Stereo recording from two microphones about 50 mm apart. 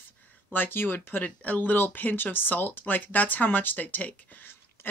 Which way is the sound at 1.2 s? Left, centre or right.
Left.